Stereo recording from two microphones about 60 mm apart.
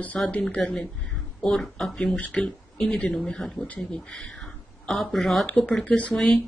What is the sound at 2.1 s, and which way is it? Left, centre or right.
Speech, left.